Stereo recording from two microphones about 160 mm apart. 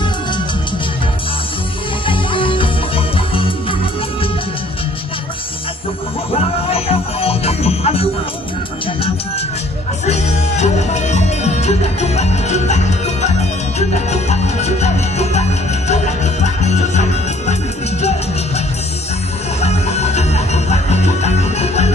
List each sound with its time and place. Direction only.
2.0 s music: 30° left (ahead or behind)
6.3 s music: 40° left (ahead or behind)
10.0 s music: 45° left (ahead or behind)
19.6 s music: 45° left (ahead or behind)